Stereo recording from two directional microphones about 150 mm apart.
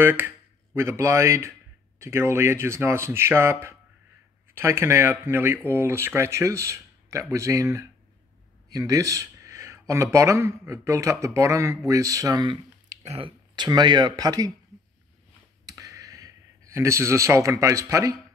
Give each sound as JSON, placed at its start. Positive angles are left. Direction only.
{"t": 0.0, "sound": "speech", "side_deg": -15}
{"t": 4.6, "sound": "speech", "side_deg": -15}
{"t": 13.0, "sound": "speech", "side_deg": -40}
{"t": 13.6, "sound": "speech", "side_deg": -30}
{"t": 15.6, "sound": "a sound", "side_deg": -20}